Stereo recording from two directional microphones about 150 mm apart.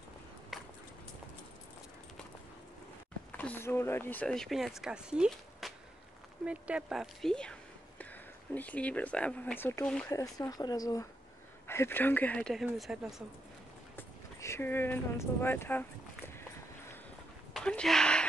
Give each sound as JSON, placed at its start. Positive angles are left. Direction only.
{"t": 0.5, "sound": "a sound", "side_deg": 0}
{"t": 3.3, "sound": "speech", "side_deg": 10}
{"t": 8.5, "sound": "speech", "side_deg": 10}
{"t": 10.1, "sound": "speech", "side_deg": 20}
{"t": 13.9, "sound": "speech", "side_deg": 15}
{"t": 17.6, "sound": "a sound", "side_deg": 5}